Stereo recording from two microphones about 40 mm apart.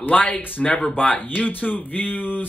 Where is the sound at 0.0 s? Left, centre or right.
Left.